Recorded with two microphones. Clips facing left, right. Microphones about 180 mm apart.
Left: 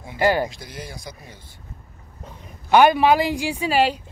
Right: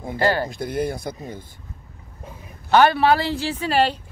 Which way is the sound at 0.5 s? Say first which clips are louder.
Right 12 dB; 55° right (ahead or behind).